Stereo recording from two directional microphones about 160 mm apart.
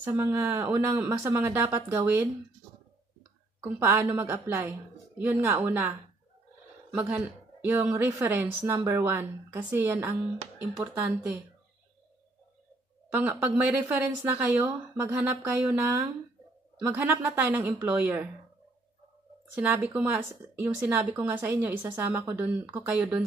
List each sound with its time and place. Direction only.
0.0 s a woman's voice: 15° right (ahead or behind)
3.6 s a woman's voice: 15° right (ahead or behind)
13.1 s a woman's voice: 10° right (ahead or behind)
19.5 s a woman's voice: 10° right (ahead or behind)